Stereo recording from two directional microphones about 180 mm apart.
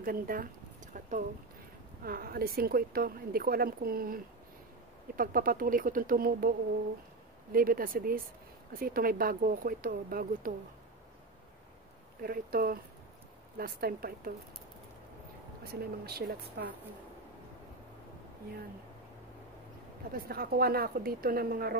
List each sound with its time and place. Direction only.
0.0 s speech: 50° right (ahead or behind)
7.5 s speech: 50° right (ahead or behind)
12.2 s speech: 55° right (ahead or behind)
15.7 s speech: 60° right (ahead or behind)
20.1 s speech: 55° right (ahead or behind)